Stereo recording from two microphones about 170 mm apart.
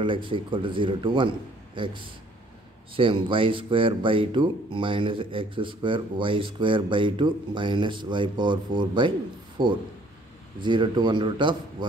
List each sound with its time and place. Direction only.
0.0 s speech: 30° right (ahead or behind)
3.0 s speech: 30° right (ahead or behind)